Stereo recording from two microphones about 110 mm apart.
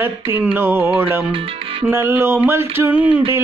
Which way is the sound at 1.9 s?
20° right (ahead or behind).